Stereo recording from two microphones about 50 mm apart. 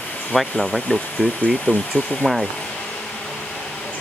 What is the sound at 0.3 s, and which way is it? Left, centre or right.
Speech, centre.